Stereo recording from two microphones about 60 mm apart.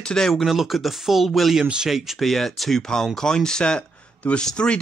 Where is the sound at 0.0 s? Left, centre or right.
Centre.